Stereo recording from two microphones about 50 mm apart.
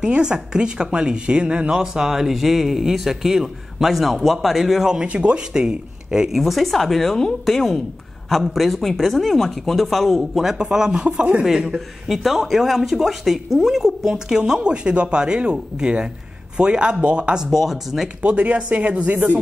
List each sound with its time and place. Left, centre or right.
0.0 s speech: centre
5.0 s speech: right
11.4 s speech: centre
17.5 s speech: centre
18.2 s speech: right